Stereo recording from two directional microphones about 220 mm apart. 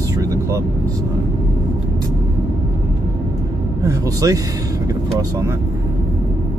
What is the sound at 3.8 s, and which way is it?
Speech, 15° right (ahead or behind).